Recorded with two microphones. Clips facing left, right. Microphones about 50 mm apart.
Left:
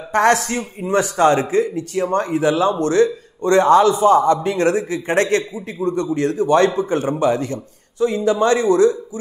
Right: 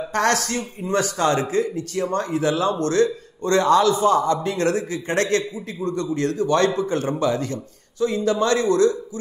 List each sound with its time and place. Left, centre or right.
0.1 s a man's voice: left